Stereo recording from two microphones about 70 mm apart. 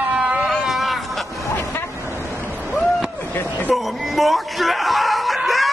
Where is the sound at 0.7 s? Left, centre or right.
Centre.